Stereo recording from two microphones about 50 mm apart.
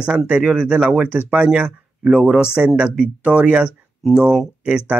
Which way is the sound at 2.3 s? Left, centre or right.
Right.